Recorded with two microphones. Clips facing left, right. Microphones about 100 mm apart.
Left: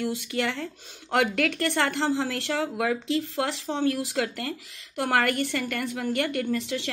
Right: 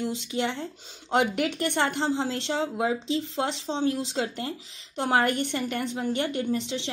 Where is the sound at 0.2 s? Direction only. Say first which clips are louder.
Even; 20° right (ahead or behind).